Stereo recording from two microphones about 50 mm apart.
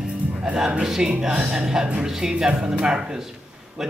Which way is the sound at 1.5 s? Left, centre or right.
Centre.